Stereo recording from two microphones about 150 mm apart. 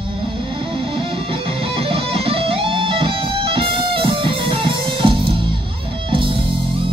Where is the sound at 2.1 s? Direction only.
40° right (ahead or behind).